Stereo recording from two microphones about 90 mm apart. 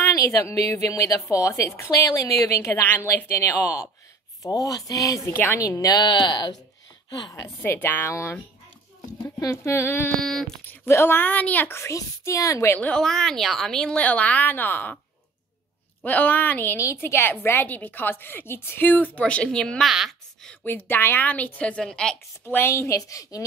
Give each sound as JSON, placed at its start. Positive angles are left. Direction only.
{"t": 0.0, "sound": "a woman's voice", "side_deg": 35}
{"t": 7.4, "sound": "a woman's voice", "side_deg": 30}
{"t": 10.1, "sound": "a sound", "side_deg": 5}
{"t": 10.7, "sound": "a woman's voice", "side_deg": 25}
{"t": 12.9, "sound": "a woman's voice", "side_deg": 5}
{"t": 16.0, "sound": "a woman's voice", "side_deg": 20}
{"t": 16.7, "sound": "a woman's voice", "side_deg": 30}
{"t": 19.9, "sound": "a sound", "side_deg": -5}
{"t": 20.6, "sound": "a woman's voice", "side_deg": 20}
{"t": 22.4, "sound": "a woman's voice", "side_deg": 25}